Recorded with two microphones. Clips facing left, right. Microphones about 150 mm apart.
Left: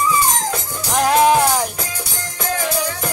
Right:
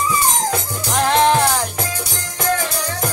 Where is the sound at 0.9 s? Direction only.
5° left (ahead or behind).